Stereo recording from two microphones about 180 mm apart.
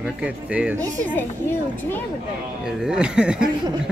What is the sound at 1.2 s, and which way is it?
Speech, 10° left (ahead or behind).